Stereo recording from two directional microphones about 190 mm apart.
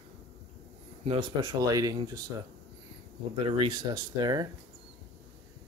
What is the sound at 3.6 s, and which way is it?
Speech, 25° right (ahead or behind).